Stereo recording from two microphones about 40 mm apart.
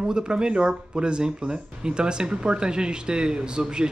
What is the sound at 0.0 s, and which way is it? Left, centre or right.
Speech, right.